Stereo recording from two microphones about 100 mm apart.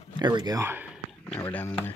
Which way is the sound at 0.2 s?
45° right (ahead or behind).